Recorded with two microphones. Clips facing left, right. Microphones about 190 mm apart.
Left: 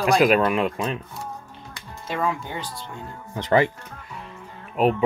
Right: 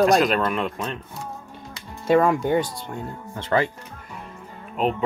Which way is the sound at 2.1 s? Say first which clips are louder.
Right 8 dB; 55° right (ahead or behind).